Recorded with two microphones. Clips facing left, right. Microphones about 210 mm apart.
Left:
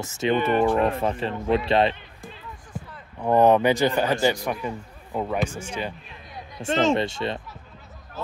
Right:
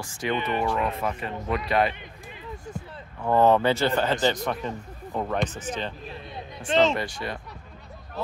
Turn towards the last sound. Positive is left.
turn(degrees=25)  # may be behind; listen again after turning